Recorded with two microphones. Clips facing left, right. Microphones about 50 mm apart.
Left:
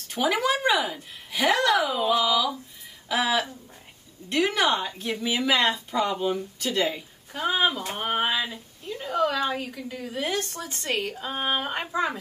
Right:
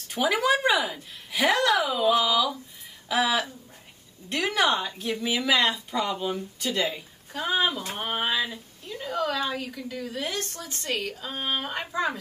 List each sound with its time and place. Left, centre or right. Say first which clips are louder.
0.1 s a woman's voice: right 1 dB; centre
8.4 s a sound: right 1 dB; centre
9.1 s a woman's voice: left 3 dB; centre
10.4 s speech: left 2 dB; left; by 12.1 s centre